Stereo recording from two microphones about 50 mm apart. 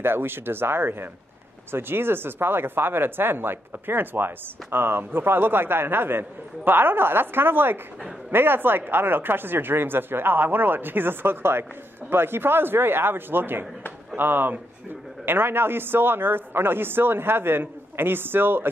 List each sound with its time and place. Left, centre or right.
0.0 s speech: right